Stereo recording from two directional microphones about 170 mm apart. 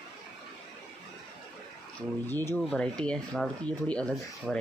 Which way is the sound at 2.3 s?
15° left (ahead or behind).